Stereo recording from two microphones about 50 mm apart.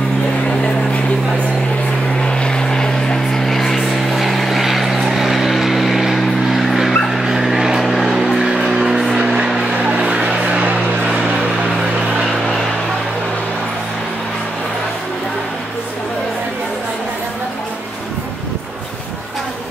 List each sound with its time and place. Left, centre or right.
2.2 s vehicle: centre
7.2 s dog: centre
7.8 s vehicle: centre
8.4 s music: centre